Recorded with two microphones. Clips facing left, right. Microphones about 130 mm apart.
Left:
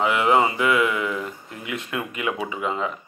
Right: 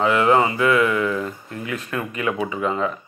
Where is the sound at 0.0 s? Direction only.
20° left (ahead or behind).